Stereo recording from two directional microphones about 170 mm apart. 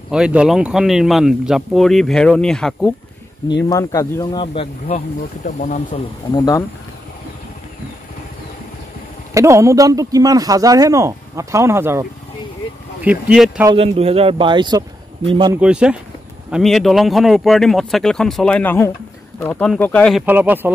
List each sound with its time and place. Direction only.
0.1 s speech: 5° right (ahead or behind)
3.6 s speech: 20° left (ahead or behind)
5.2 s speech: 50° left (ahead or behind)
6.2 s speech: 20° left (ahead or behind)
9.3 s speech: 15° right (ahead or behind)
13.7 s speech: 35° right (ahead or behind)
15.6 s speech: 5° right (ahead or behind)
20.2 s speech: 10° right (ahead or behind)